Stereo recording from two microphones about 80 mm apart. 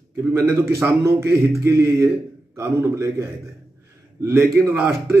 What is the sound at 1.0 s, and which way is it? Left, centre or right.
A man's voice, right.